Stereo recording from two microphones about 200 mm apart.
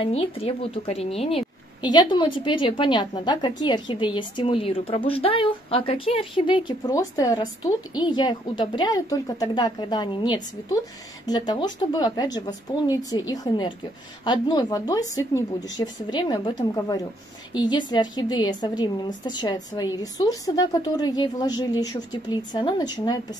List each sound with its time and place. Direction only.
0.0 s a woman's voice: 30° left (ahead or behind)